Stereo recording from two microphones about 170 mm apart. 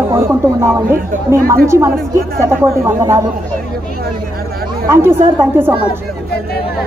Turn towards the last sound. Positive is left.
turn(degrees=-15)  # may be behind; listen again after turning